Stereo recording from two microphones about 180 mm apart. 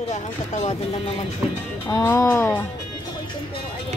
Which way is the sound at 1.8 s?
15° left (ahead or behind).